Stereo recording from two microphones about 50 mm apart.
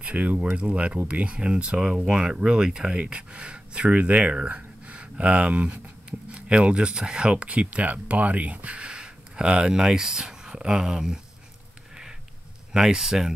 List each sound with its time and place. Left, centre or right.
0.0 s speech: right
12.7 s speech: centre